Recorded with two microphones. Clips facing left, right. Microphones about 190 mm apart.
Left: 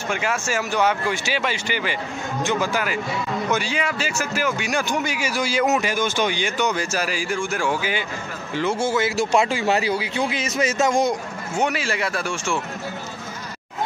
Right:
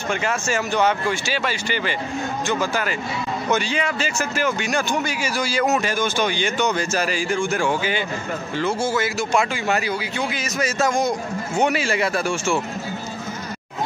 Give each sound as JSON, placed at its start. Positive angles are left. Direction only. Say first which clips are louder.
{"t": 0.1, "sound": "a man's voice", "louder": "right 1 dB", "side_deg": 10}
{"t": 8.5, "sound": "a man's voice", "louder": "left 1 dB", "side_deg": 20}
{"t": 9.2, "sound": "a man's voice", "louder": "left 2 dB", "side_deg": 30}
{"t": 11.0, "sound": "speech", "louder": "left 1 dB", "side_deg": 0}